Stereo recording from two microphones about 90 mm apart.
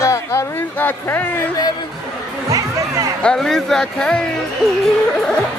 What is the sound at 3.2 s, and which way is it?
Speech, 5° left (ahead or behind).